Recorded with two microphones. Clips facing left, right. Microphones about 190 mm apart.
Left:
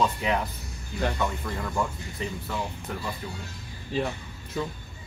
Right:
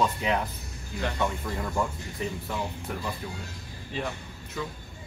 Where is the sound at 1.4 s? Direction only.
5° right (ahead or behind).